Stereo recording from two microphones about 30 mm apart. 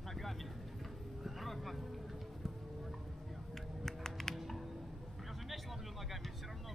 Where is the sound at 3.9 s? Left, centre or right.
Centre.